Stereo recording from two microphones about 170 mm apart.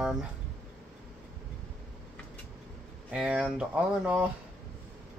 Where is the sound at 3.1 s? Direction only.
5° right (ahead or behind).